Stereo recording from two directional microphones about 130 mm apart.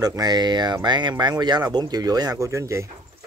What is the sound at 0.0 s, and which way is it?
Speech, 30° right (ahead or behind).